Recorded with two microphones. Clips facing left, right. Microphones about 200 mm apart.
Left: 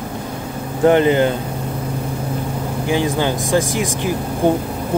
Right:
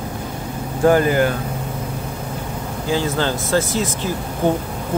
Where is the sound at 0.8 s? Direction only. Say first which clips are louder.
Left 2 dB; 20° left (ahead or behind).